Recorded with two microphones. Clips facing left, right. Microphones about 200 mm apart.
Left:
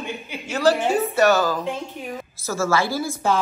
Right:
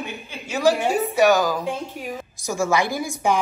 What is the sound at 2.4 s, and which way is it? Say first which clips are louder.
Speech: even; 15° right (ahead or behind).